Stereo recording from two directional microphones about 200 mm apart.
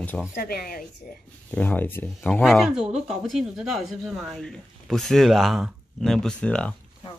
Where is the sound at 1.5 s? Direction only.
10° left (ahead or behind).